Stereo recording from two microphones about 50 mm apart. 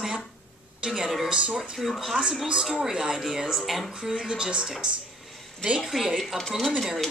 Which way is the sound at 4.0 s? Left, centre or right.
Centre.